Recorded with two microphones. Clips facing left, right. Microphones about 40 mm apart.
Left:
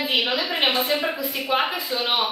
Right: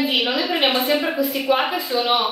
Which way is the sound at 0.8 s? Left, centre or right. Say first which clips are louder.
Right 3 dB; right.